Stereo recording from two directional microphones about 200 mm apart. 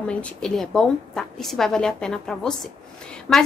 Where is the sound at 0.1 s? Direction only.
5° left (ahead or behind).